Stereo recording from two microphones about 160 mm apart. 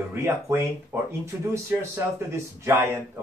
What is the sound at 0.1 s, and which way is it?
Speech, 15° right (ahead or behind).